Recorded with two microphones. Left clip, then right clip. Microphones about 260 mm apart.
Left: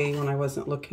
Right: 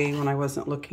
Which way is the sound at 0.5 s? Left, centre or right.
Centre.